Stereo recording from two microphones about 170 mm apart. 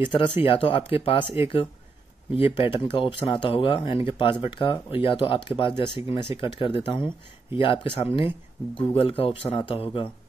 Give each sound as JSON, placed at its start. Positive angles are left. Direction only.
{"t": 0.0, "sound": "speech", "side_deg": 30}
{"t": 2.3, "sound": "speech", "side_deg": 30}